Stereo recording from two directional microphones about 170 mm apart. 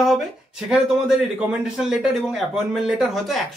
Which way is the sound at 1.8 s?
5° right (ahead or behind).